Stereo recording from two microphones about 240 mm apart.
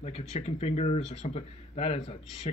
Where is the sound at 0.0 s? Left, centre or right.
Left.